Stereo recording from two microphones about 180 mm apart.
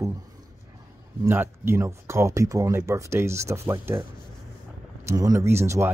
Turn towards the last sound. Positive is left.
turn(degrees=-15)  # may be behind; listen again after turning